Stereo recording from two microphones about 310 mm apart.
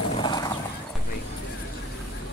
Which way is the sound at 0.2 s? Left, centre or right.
Centre.